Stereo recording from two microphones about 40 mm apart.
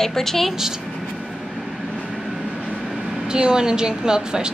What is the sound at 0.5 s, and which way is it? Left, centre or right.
Speech, centre.